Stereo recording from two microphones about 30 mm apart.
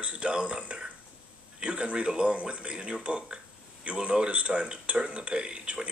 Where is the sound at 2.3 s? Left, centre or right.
Right.